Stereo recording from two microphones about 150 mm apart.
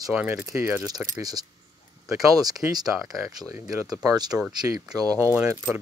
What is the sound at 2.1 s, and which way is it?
Speech, 25° right (ahead or behind).